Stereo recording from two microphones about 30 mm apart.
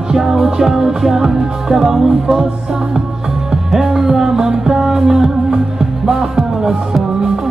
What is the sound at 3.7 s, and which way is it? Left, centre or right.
Music, centre.